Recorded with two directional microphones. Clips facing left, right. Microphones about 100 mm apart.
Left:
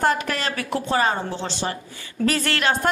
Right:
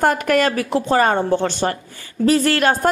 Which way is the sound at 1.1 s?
55° right (ahead or behind).